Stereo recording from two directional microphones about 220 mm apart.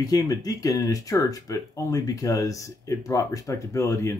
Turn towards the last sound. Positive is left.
turn(degrees=15)  # may be behind; listen again after turning